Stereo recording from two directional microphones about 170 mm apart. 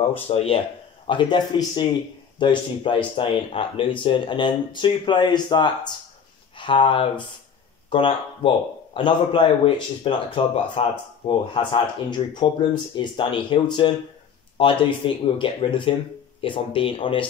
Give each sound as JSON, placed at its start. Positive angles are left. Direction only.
{"t": 0.3, "sound": "speech", "side_deg": 35}